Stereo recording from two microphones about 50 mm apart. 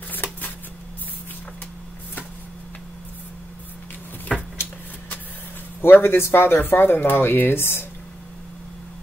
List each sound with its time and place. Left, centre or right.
0.1 s shuffling cards: left
4.3 s a sound: centre
5.8 s speech: left